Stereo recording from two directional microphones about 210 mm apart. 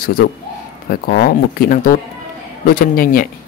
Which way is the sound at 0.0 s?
45° left (ahead or behind).